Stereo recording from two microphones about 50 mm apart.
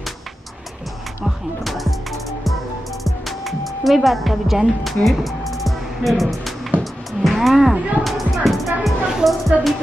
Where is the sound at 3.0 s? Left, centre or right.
Centre.